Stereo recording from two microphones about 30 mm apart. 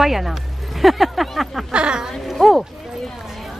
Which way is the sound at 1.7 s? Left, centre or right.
Right.